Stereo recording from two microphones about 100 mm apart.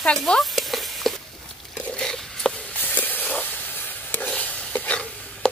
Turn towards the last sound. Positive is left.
turn(degrees=10)  # may be behind; listen again after turning